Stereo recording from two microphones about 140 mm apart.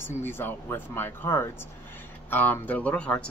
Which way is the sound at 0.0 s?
15° left (ahead or behind).